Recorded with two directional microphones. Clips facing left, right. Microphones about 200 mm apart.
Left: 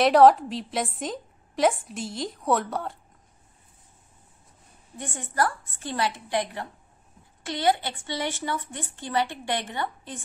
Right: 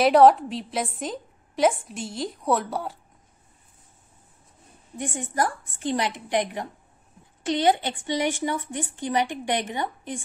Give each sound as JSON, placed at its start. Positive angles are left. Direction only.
{"t": 0.0, "sound": "a woman's voice", "side_deg": 0}
{"t": 4.9, "sound": "a woman's voice", "side_deg": -15}